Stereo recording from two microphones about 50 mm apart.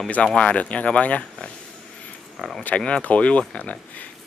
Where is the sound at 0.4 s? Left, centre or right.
Left.